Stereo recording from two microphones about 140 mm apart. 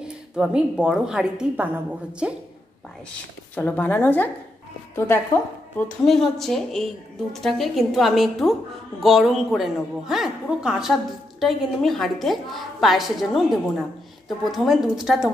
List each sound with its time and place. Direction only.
0.0 s a woman's voice: 5° right (ahead or behind)
3.5 s a woman's voice: 15° left (ahead or behind)
6.0 s a woman's voice: centre (ahead or behind)